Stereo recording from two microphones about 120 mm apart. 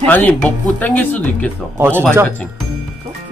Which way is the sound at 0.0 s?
15° left (ahead or behind).